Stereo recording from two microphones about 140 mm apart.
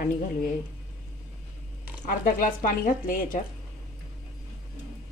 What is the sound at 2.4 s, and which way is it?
A woman's voice, 80° left.